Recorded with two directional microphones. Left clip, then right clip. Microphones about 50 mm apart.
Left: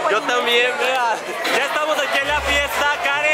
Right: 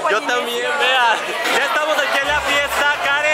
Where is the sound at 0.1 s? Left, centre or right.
Centre.